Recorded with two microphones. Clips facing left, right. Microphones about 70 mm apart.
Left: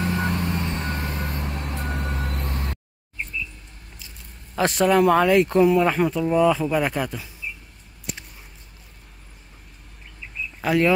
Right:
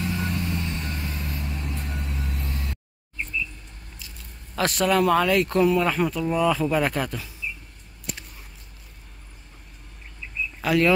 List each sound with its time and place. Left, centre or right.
0.0 s vehicle: left
1.3 s vehicle: left
4.6 s speech: left
10.6 s speech: left